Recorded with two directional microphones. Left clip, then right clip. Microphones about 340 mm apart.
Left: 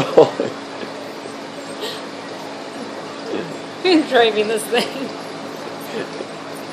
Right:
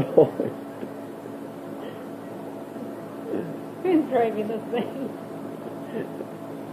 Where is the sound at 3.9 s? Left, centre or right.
Left.